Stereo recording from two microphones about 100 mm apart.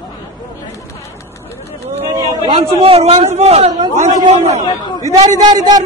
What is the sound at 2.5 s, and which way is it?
A man's voice, 70° right (ahead or behind).